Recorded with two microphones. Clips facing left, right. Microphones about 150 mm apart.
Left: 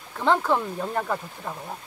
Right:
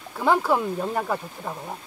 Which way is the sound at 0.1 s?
10° right (ahead or behind).